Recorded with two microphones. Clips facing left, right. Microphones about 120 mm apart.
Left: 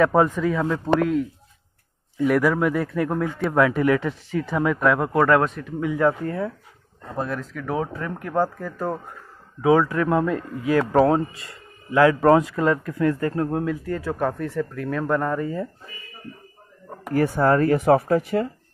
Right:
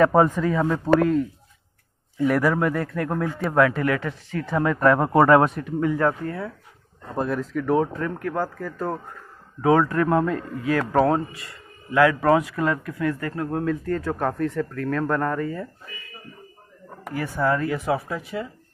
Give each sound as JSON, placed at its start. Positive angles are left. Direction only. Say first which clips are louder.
{"t": 0.0, "sound": "a man's voice", "louder": "right 1 dB", "side_deg": 0}
{"t": 2.2, "sound": "a man's voice", "louder": "left 1 dB", "side_deg": 0}
{"t": 3.5, "sound": "a man's voice", "louder": "left 1 dB", "side_deg": 15}
{"t": 5.2, "sound": "a man's voice", "louder": "right 2 dB", "side_deg": -10}
{"t": 5.6, "sound": "a man's voice", "louder": "even", "side_deg": 0}
{"t": 6.2, "sound": "speech", "louder": "left 3 dB", "side_deg": 25}
{"t": 7.2, "sound": "a man's voice", "louder": "right 3 dB", "side_deg": 0}
{"t": 8.2, "sound": "a man's voice", "louder": "left 3 dB", "side_deg": 20}
{"t": 13.7, "sound": "speech", "louder": "even", "side_deg": 10}
{"t": 17.1, "sound": "speech", "louder": "left 5 dB", "side_deg": 45}